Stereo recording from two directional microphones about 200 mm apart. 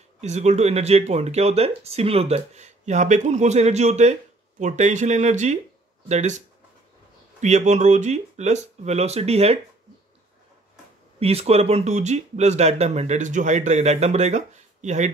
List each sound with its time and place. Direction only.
0.2 s speech: 35° right (ahead or behind)
11.1 s speech: 30° right (ahead or behind)